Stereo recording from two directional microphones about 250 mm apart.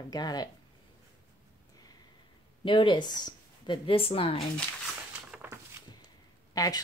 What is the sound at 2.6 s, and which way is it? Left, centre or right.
A woman's voice, centre.